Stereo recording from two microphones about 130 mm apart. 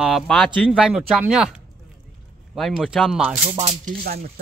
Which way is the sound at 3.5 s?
65° right (ahead or behind).